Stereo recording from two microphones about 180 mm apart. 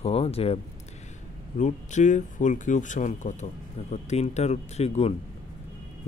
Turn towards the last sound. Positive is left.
turn(degrees=35)  # may be behind; listen again after turning